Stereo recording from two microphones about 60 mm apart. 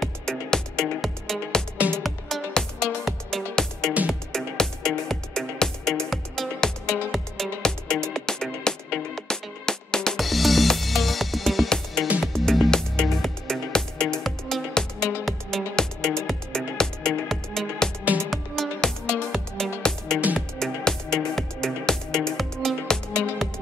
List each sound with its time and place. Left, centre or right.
0.0 s music: centre